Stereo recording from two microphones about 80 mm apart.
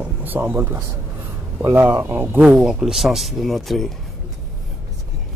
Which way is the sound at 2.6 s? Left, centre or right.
Centre.